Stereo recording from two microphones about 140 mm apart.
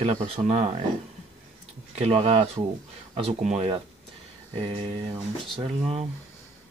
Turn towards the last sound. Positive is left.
turn(degrees=-45)  # may be behind; listen again after turning